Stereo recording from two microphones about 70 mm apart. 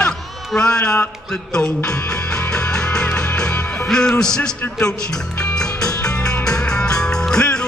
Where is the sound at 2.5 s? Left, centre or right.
Centre.